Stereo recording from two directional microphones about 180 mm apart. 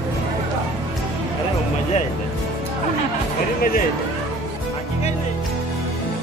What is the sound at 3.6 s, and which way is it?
Speech, 55° left (ahead or behind).